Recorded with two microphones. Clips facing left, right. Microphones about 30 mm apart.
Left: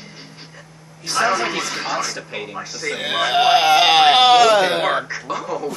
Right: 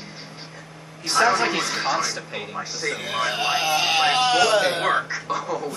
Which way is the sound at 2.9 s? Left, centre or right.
Left.